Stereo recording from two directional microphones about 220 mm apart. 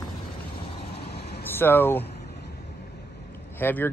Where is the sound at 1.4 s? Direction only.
10° left (ahead or behind).